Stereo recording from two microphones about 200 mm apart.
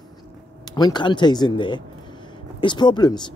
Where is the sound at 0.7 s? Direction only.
20° left (ahead or behind).